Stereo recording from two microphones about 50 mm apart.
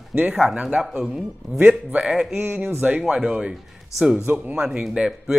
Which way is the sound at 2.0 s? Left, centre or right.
Centre.